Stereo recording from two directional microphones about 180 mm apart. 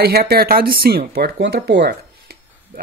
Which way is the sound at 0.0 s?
60° right (ahead or behind).